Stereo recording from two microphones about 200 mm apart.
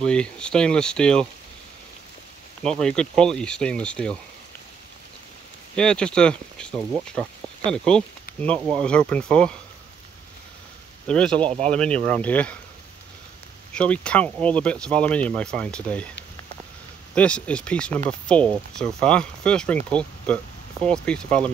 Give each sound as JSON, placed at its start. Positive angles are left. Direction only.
{"t": 0.0, "sound": "speech", "side_deg": 5}
{"t": 2.6, "sound": "speech", "side_deg": 5}
{"t": 5.8, "sound": "speech", "side_deg": 5}
{"t": 11.1, "sound": "speech", "side_deg": 5}
{"t": 11.4, "sound": "speech", "side_deg": -35}
{"t": 11.7, "sound": "speech", "side_deg": 5}
{"t": 13.7, "sound": "speech", "side_deg": 5}
{"t": 17.1, "sound": "speech", "side_deg": 5}